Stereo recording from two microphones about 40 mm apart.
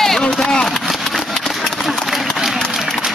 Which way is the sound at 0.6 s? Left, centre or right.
Centre.